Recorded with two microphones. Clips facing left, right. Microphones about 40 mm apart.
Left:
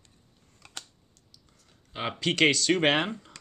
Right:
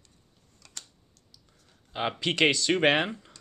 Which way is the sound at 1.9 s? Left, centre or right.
Centre.